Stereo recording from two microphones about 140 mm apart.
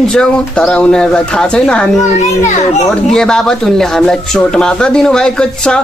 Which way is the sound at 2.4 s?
55° left (ahead or behind).